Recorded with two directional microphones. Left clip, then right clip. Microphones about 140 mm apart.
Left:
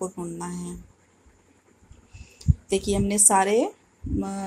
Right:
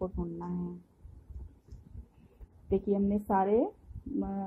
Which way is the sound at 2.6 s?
15° left (ahead or behind).